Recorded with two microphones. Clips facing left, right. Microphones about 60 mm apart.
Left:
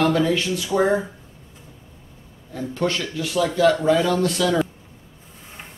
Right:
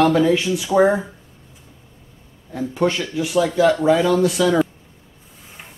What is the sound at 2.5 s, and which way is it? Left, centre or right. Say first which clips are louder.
Speech: right 4 dB; centre.